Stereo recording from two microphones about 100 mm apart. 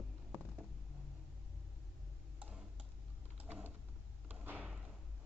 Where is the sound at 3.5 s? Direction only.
15° right (ahead or behind).